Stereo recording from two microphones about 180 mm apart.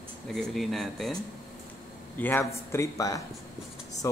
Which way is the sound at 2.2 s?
10° left (ahead or behind).